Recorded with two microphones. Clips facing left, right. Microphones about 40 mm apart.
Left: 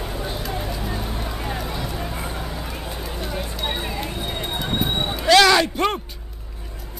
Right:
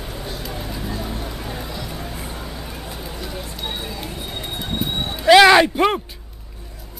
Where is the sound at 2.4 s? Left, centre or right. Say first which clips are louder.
Left 2 dB; centre.